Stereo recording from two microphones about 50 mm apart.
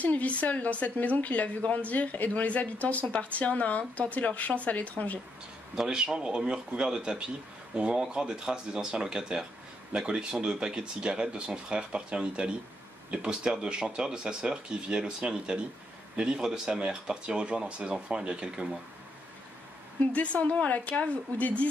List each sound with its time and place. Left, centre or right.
0.0 s a woman's voice: left
5.8 s speech: centre
20.1 s a woman's voice: left